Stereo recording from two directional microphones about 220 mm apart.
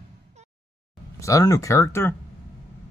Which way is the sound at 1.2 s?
15° left (ahead or behind).